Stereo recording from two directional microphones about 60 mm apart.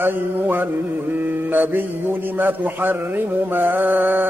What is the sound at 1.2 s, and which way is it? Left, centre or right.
A man's voice, right.